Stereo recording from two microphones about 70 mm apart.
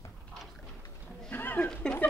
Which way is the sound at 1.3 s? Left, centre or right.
Left.